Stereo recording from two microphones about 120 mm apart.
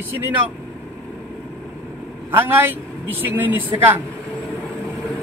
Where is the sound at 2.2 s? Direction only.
15° right (ahead or behind).